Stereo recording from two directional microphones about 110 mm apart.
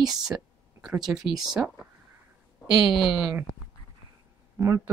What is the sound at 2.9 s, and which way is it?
Speech, 5° right (ahead or behind).